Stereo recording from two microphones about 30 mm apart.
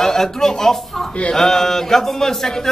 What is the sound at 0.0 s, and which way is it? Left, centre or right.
A man's voice, centre.